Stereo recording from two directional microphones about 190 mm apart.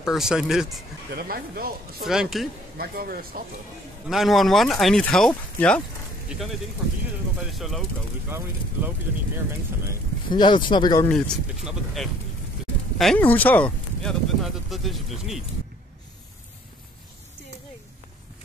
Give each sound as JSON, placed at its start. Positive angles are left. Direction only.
{"t": 0.0, "sound": "speech", "side_deg": 0}
{"t": 1.1, "sound": "speech", "side_deg": -55}
{"t": 2.0, "sound": "speech", "side_deg": 0}
{"t": 2.8, "sound": "speech", "side_deg": -50}
{"t": 4.1, "sound": "speech", "side_deg": 0}
{"t": 7.5, "sound": "speech", "side_deg": 0}
{"t": 10.3, "sound": "speech", "side_deg": 25}
{"t": 11.1, "sound": "speech", "side_deg": 5}